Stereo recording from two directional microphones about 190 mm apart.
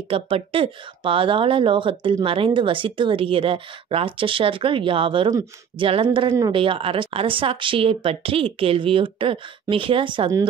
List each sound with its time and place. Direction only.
0.1 s speech: 30° right (ahead or behind)